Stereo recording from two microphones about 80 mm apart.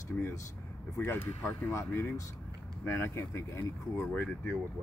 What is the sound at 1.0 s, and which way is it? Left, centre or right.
Speech, left.